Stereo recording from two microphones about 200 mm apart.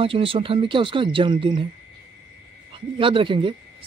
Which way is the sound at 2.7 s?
25° right (ahead or behind).